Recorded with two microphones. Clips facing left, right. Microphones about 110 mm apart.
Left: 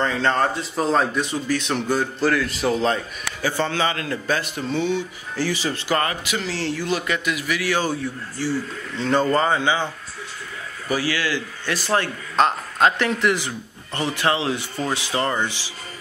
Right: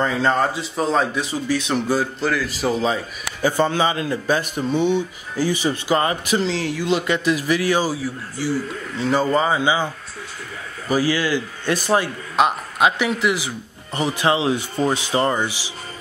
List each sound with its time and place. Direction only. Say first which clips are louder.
0.0 s speech: right 1 dB; 10° right (ahead or behind)
3.3 s speech: right 5 dB; 15° right (ahead or behind); by 7.6 s 35° right (ahead or behind)
7.8 s speech: right 1 dB; 5° right (ahead or behind)
10.9 s speech: right 4 dB; 20° right (ahead or behind)